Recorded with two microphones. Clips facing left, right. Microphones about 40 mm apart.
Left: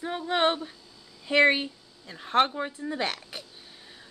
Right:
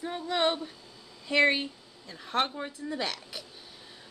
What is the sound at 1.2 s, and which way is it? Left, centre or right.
Speech, left.